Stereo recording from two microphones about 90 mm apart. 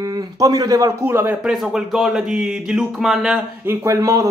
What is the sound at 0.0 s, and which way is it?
Speech, 40° right (ahead or behind).